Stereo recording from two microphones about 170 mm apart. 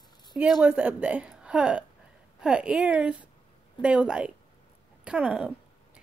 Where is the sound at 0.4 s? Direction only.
5° right (ahead or behind).